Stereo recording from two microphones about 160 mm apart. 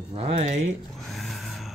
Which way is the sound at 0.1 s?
45° right (ahead or behind).